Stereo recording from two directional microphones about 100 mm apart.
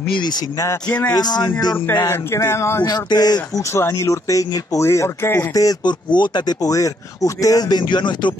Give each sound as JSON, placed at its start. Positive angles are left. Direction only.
{"t": 0.8, "sound": "speech", "side_deg": 10}
{"t": 1.1, "sound": "speech", "side_deg": 45}
{"t": 2.0, "sound": "a sound", "side_deg": 30}
{"t": 2.8, "sound": "speech", "side_deg": 40}
{"t": 3.7, "sound": "speech", "side_deg": 25}